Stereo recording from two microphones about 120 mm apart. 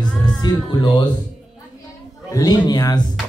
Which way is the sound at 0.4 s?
35° left (ahead or behind).